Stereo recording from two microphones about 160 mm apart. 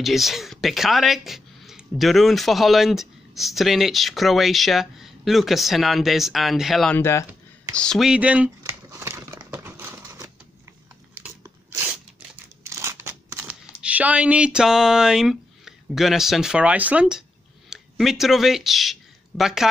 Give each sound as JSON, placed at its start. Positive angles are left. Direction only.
{"t": 0.0, "sound": "speech", "side_deg": 0}
{"t": 7.0, "sound": "speech", "side_deg": 15}
{"t": 7.7, "sound": "speech", "side_deg": 5}
{"t": 8.6, "sound": "crumpling", "side_deg": -15}
{"t": 11.2, "sound": "crunch", "side_deg": -15}
{"t": 11.9, "sound": "scissors", "side_deg": -15}
{"t": 17.6, "sound": "speech", "side_deg": 0}